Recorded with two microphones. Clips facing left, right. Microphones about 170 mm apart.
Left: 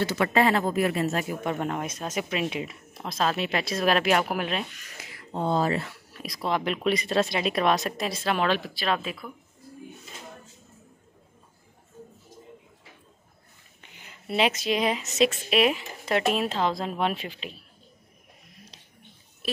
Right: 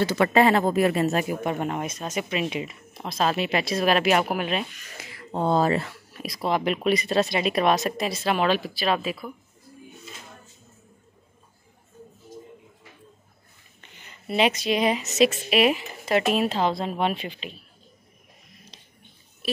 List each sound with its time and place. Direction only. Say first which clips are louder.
0.0 s speech: right 3 dB; 25° right (ahead or behind)
1.1 s a woman's voice: right 3 dB; 10° right (ahead or behind)
5.3 s speech: right 3 dB; 55° right (ahead or behind)
6.2 s a woman's voice: right 3 dB; 5° right (ahead or behind)
13.7 s a woman's voice: even; 10° left (ahead or behind)
18.7 s a sound: right 1 dB; 5° left (ahead or behind)